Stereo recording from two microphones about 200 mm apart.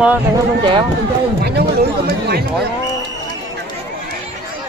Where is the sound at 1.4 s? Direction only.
50° right (ahead or behind).